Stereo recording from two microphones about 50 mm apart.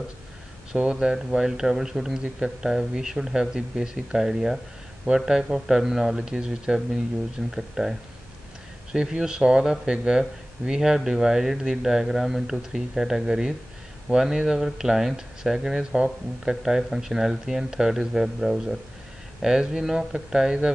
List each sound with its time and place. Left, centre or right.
0.7 s speech: centre
8.9 s speech: centre